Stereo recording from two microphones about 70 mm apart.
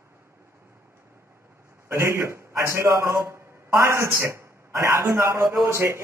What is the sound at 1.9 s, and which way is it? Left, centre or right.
A man's voice, right.